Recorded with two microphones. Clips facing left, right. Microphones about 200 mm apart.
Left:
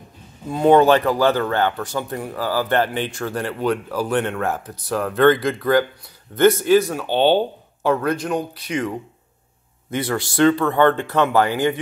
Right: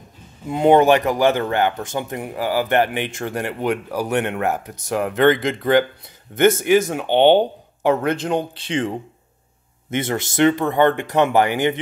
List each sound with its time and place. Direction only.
0.5 s a man's voice: 20° right (ahead or behind)